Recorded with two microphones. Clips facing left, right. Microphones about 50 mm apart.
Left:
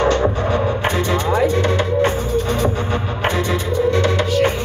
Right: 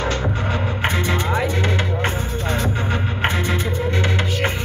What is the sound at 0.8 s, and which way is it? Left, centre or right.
Music, right.